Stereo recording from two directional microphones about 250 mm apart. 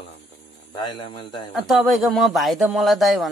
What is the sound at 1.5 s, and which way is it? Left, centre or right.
Speech, centre.